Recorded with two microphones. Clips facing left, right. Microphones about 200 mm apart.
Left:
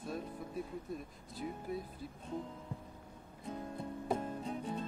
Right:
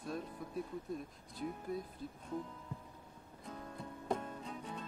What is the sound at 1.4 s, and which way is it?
Speech, 5° left (ahead or behind).